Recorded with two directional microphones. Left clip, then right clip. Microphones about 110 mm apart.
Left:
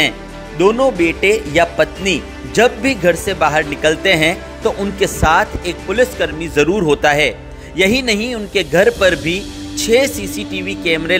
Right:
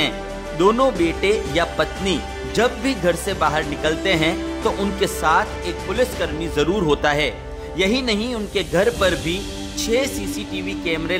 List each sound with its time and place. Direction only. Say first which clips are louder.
0.6 s speech: left 4 dB; 5° left (ahead or behind); by 11.1 s 25° left (ahead or behind)